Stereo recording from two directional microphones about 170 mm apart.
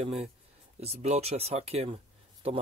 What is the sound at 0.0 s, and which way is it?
Speech, 40° right (ahead or behind).